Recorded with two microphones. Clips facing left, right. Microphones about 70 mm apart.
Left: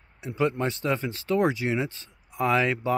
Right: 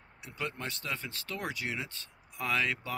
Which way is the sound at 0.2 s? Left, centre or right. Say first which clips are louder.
Left 12 dB; left.